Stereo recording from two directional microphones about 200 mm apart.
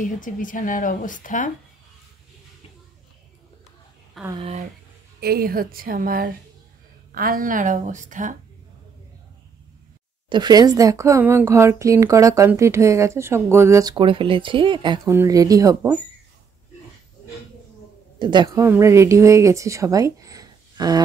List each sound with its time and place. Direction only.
0.0 s speech: 40° left (ahead or behind)
4.3 s speech: 30° right (ahead or behind)
5.2 s a woman's voice: 50° right (ahead or behind)
10.3 s speech: 20° right (ahead or behind)
18.2 s speech: 20° right (ahead or behind)